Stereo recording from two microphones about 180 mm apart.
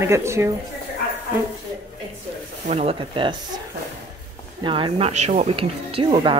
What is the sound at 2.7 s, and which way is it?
Speech, 35° right (ahead or behind).